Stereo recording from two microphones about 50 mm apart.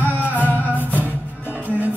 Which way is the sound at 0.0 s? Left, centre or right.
Right.